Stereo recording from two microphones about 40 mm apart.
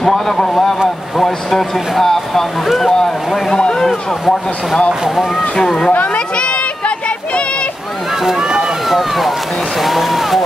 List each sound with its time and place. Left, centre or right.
0.0 s speech: centre
1.1 s a sound: centre
3.5 s a sound: left
5.6 s speech: centre
6.3 s run: left
8.2 s run: centre
8.8 s rowboat: centre
9.8 s speech: centre